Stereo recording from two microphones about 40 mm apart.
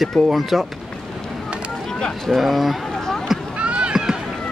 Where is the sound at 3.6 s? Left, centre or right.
Right.